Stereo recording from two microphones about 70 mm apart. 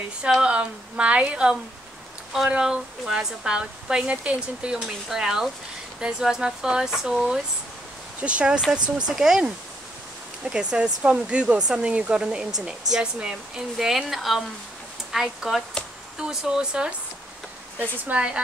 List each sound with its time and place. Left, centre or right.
0.2 s speech: centre
17.7 s speech: right